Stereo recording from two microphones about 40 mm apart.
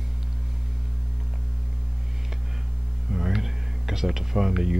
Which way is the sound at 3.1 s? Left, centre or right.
Centre.